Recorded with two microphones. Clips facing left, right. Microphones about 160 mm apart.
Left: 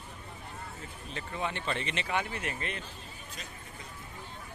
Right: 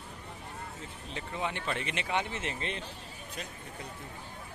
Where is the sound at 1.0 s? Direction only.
15° right (ahead or behind).